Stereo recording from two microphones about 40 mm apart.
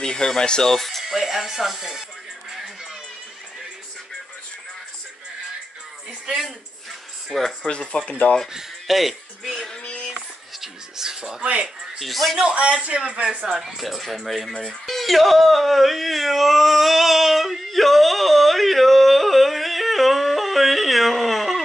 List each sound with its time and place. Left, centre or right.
0.0 s speech: centre
1.1 s speech: centre
2.5 s music: centre
6.2 s speech: centre
7.2 s speech: centre
7.9 s speech: left
8.8 s speech: centre
10.6 s a sound: centre
12.0 s speech: centre
12.4 s speech: right
13.6 s speech: centre